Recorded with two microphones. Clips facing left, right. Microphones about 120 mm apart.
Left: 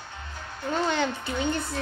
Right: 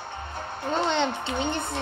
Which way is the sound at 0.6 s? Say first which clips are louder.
Right 1 dB; 25° right (ahead or behind).